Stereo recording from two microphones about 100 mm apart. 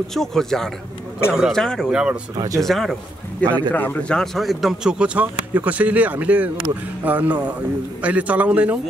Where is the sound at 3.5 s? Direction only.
15° left (ahead or behind).